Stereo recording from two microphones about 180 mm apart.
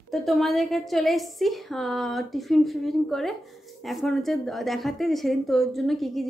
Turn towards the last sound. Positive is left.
turn(degrees=0)  # may be behind; listen again after turning